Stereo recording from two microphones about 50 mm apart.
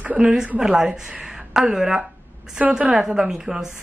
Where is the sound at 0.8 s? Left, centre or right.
Centre.